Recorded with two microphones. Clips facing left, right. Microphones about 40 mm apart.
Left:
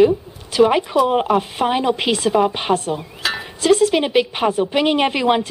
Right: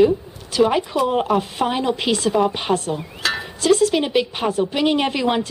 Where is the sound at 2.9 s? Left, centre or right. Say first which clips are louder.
Even; centre.